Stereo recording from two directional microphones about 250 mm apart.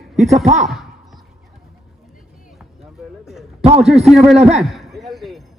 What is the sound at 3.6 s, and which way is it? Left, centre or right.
Speech, right.